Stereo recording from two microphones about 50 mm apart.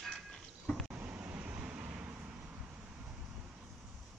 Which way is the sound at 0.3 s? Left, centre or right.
Centre.